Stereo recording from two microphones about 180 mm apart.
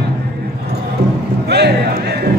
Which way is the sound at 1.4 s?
65° right (ahead or behind).